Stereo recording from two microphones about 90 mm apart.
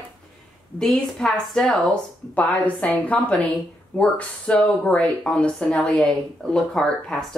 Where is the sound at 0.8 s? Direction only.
5° left (ahead or behind).